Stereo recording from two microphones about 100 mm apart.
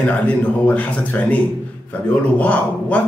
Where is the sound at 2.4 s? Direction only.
15° left (ahead or behind).